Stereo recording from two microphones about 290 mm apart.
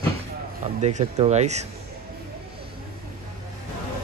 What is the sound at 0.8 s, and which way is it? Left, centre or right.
Speech, right.